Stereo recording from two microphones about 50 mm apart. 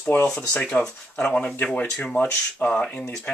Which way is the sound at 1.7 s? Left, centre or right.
Left.